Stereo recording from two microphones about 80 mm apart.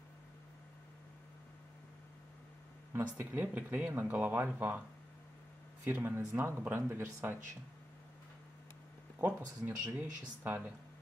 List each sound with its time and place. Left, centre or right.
2.9 s speech: right
5.9 s speech: right
9.2 s speech: right